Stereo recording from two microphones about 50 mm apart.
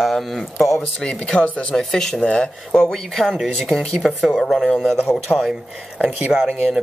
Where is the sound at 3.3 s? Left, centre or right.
Centre.